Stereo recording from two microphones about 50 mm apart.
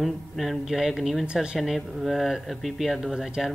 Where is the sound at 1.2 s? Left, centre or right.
Centre.